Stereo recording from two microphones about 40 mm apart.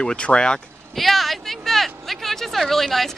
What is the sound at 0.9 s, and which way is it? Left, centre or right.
Speech, centre.